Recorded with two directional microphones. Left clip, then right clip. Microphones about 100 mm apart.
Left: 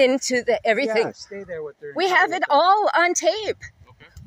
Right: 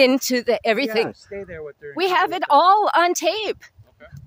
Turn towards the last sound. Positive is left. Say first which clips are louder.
# even
turn(degrees=-60)  # may be behind; listen again after turning